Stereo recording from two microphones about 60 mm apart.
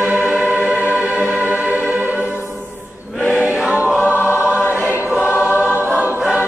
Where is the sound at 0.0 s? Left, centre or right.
Right.